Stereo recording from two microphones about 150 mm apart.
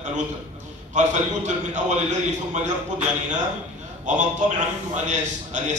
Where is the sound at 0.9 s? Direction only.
55° right (ahead or behind).